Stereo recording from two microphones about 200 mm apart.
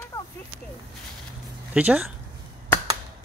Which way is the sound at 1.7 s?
5° right (ahead or behind).